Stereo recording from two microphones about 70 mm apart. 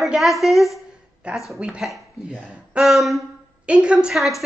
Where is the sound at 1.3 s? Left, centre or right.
Centre.